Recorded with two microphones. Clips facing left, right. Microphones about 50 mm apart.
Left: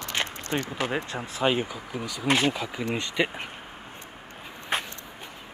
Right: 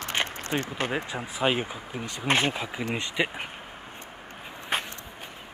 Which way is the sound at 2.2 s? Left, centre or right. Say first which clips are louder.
Left 1 dB; right.